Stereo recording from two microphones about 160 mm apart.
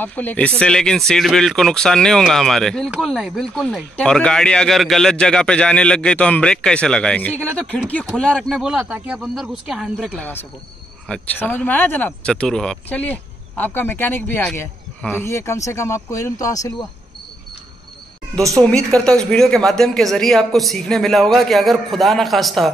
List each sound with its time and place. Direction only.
0.0 s speech: 10° left (ahead or behind)
10.0 s speech: 10° left (ahead or behind)
18.6 s speech: 5° left (ahead or behind)